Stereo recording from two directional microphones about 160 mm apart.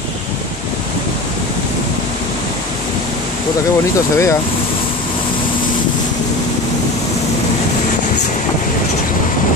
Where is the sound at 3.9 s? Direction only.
20° left (ahead or behind).